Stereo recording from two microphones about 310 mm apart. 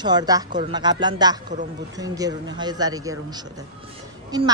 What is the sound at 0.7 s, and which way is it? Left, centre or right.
A woman's voice, centre.